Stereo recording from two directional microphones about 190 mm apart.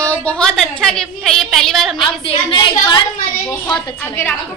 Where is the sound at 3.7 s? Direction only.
10° left (ahead or behind).